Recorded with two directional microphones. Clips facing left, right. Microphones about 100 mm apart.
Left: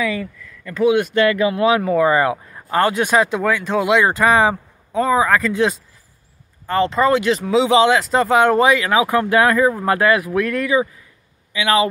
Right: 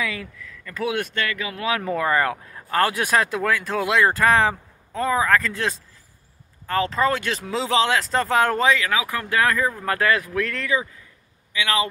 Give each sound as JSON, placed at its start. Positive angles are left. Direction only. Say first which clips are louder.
{"t": 0.0, "sound": "speech", "louder": "left 7 dB", "side_deg": 0}
{"t": 1.1, "sound": "speech", "louder": "left 12 dB", "side_deg": 25}
{"t": 1.8, "sound": "speech", "louder": "left 6 dB", "side_deg": 10}
{"t": 8.5, "sound": "speech", "louder": "left 6 dB", "side_deg": 15}